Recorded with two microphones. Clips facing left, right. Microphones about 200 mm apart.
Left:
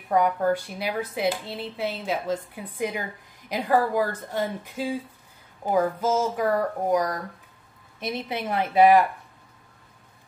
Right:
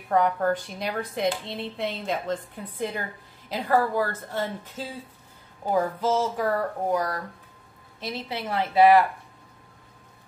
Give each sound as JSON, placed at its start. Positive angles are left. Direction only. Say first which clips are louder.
{"t": 0.1, "sound": "speech", "louder": "left 1 dB", "side_deg": 10}